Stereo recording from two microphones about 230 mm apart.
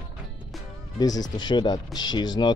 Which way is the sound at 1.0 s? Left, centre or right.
Centre.